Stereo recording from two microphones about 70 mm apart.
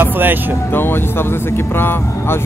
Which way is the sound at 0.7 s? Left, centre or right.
Left.